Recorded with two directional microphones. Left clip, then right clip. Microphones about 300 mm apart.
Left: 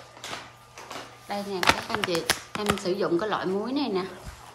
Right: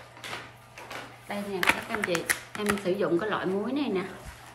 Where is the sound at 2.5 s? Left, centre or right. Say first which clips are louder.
Right 1 dB; centre.